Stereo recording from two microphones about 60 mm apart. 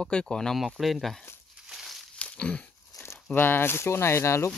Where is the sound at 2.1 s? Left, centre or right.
Centre.